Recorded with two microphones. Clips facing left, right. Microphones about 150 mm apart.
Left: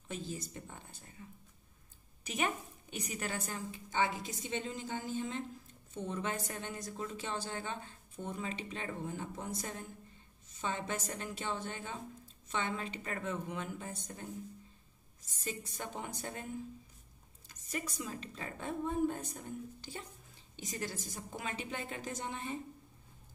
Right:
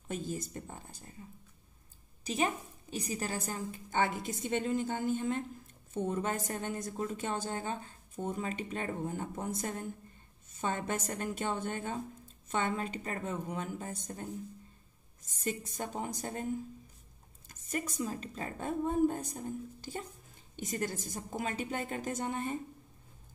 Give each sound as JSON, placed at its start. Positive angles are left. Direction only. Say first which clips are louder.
{"t": 0.1, "sound": "speech", "louder": "right 4 dB", "side_deg": -50}
{"t": 2.2, "sound": "speech", "louder": "right 3 dB", "side_deg": -35}
{"t": 15.2, "sound": "a woman's voice", "louder": "right 5 dB", "side_deg": -50}
{"t": 17.5, "sound": "speech", "louder": "right 4 dB", "side_deg": -50}
{"t": 20.5, "sound": "speech", "louder": "right 5 dB", "side_deg": -50}